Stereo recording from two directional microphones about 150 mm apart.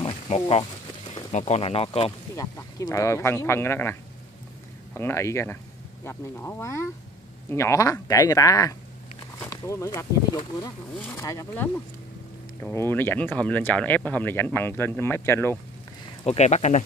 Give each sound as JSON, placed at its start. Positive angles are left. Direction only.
{"t": 0.0, "sound": "a sound", "side_deg": 40}
{"t": 1.1, "sound": "speech", "side_deg": 45}
{"t": 2.3, "sound": "speech", "side_deg": 20}
{"t": 12.7, "sound": "speech", "side_deg": 15}
{"t": 16.3, "sound": "speech", "side_deg": 50}